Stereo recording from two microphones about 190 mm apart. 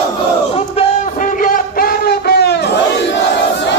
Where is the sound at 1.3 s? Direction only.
50° left (ahead or behind).